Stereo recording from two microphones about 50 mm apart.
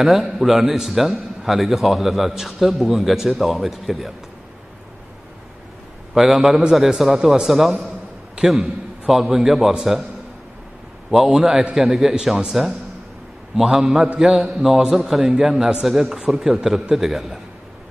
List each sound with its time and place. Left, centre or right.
0.4 s a man's voice: centre
6.1 s a man's voice: centre
11.1 s a man's voice: centre
14.3 s a man's voice: centre